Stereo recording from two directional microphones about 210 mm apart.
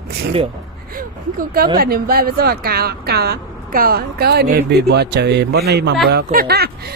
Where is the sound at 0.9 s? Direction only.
45° right (ahead or behind).